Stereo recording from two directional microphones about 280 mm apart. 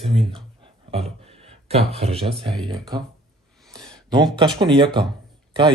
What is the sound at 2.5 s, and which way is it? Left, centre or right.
Speech, centre.